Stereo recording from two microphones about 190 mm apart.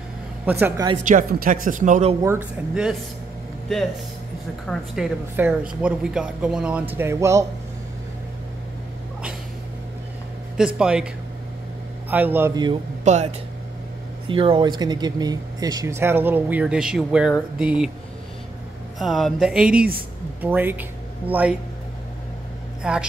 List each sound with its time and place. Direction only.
0.5 s speech: 10° right (ahead or behind)
1.0 s speech: 45° right (ahead or behind)
2.2 s speech: 10° right (ahead or behind)
4.6 s speech: 5° right (ahead or behind)
10.8 s speech: 5° right (ahead or behind)
12.1 s speech: 10° right (ahead or behind)
13.0 s speech: 35° right (ahead or behind)
14.2 s speech: 25° right (ahead or behind); by 17.9 s 5° right (ahead or behind)
18.9 s speech: centre (ahead or behind)
22.8 s speech: 5° right (ahead or behind)